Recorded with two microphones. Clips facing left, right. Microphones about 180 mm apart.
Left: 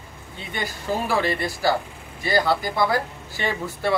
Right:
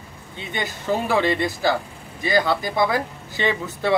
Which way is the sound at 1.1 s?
20° right (ahead or behind).